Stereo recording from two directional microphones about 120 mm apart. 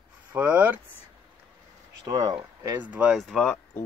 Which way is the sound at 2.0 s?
30° right (ahead or behind).